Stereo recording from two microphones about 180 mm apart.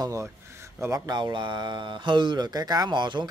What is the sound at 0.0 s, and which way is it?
Speech, 15° right (ahead or behind).